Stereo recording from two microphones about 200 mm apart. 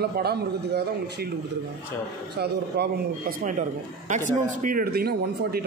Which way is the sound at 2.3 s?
55° right (ahead or behind).